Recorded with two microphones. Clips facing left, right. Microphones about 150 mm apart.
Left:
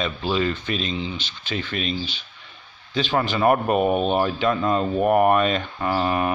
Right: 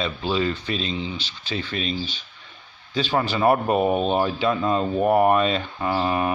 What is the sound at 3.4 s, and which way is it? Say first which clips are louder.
Speech: even; 25° right (ahead or behind).